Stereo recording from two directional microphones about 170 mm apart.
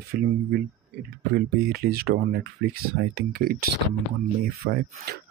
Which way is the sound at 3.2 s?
60° right (ahead or behind).